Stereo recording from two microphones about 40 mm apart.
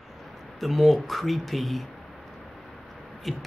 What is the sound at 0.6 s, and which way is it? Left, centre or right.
Speech, centre.